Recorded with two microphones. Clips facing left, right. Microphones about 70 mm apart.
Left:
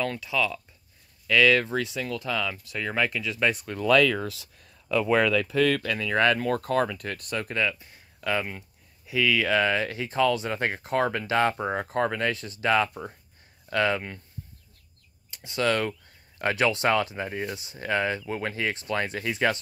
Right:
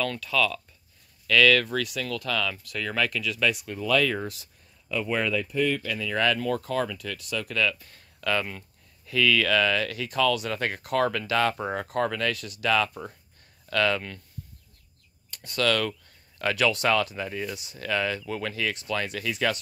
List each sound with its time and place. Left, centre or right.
0.0 s speech: centre
3.6 s speech: left
5.3 s speech: left
5.8 s speech: left
15.3 s speech: centre